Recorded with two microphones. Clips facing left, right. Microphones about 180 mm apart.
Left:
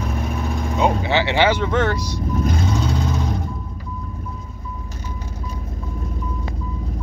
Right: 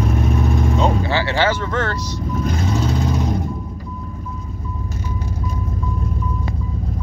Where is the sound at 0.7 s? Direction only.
15° left (ahead or behind).